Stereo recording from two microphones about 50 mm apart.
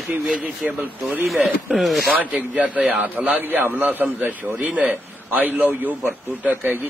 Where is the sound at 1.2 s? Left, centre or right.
Centre.